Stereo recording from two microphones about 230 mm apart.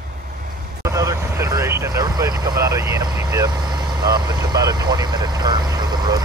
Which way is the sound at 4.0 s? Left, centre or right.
Centre.